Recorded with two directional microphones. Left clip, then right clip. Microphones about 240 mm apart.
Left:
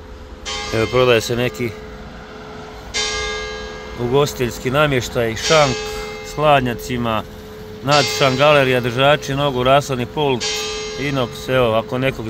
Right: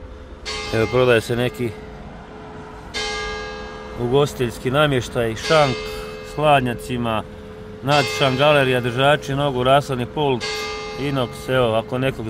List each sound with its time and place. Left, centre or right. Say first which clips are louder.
0.7 s speech: left 2 dB; centre
2.9 s church bell: left 4 dB; right
4.1 s speech: left 2 dB; centre
10.4 s a sound: left 3 dB; right
11.0 s speech: left 2 dB; centre